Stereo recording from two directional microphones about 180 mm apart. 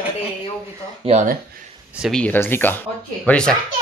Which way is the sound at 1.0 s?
40° right (ahead or behind).